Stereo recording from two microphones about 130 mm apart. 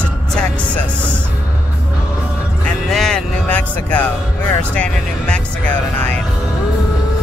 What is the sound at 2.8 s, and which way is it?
Speech, 5° left (ahead or behind).